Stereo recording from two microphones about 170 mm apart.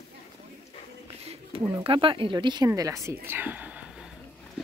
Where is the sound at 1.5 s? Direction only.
35° right (ahead or behind).